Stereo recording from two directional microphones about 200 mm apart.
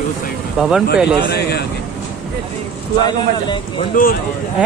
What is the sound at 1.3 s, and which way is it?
Speech, 55° left (ahead or behind).